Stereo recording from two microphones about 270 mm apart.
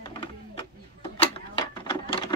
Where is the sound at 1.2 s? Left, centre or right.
Centre.